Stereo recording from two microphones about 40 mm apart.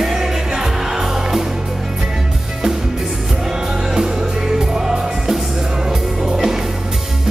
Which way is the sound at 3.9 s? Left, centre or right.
Centre.